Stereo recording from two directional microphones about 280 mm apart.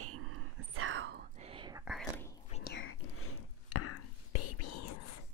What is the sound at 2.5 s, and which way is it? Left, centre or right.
Whispering, left.